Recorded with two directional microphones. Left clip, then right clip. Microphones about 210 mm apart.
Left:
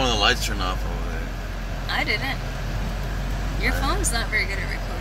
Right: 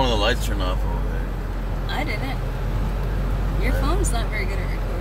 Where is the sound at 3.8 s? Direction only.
10° right (ahead or behind).